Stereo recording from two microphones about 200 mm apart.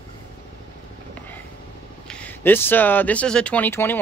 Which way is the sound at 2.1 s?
5° left (ahead or behind).